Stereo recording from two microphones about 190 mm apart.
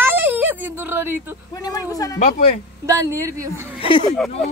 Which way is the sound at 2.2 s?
45° left (ahead or behind).